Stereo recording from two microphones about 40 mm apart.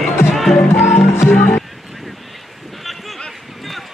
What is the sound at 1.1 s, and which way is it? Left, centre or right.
Music, left.